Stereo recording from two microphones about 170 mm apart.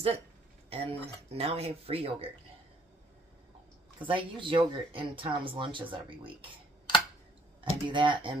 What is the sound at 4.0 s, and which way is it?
Speech, 30° right (ahead or behind).